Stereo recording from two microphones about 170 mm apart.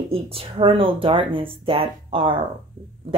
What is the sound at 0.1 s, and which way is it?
Speech, 35° right (ahead or behind).